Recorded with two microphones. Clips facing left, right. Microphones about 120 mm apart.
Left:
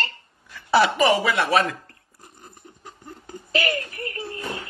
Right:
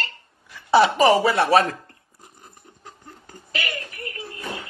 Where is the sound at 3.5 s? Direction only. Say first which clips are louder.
Left 6 dB; 35° left (ahead or behind).